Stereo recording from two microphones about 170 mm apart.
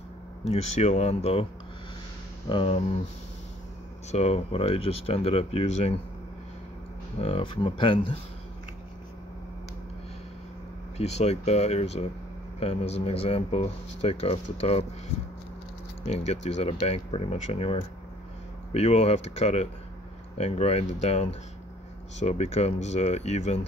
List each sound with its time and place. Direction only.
0.5 s speech: 40° left (ahead or behind)
2.5 s speech: 35° left (ahead or behind)
4.1 s speech: 35° left (ahead or behind)
7.2 s speech: 35° left (ahead or behind)
11.0 s speech: 40° left (ahead or behind)
16.1 s speech: 40° left (ahead or behind)